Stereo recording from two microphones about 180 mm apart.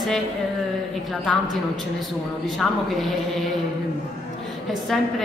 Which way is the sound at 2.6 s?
Centre (ahead or behind).